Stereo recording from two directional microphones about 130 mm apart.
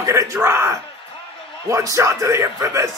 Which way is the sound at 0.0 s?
25° right (ahead or behind).